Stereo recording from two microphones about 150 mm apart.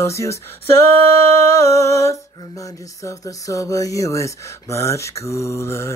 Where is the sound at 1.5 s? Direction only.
20° left (ahead or behind).